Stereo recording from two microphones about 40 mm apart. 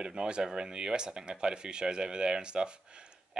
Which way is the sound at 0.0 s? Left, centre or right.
Right.